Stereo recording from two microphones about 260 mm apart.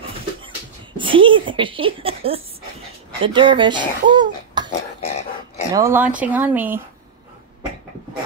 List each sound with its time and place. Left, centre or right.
0.9 s speech: centre
5.7 s speech: centre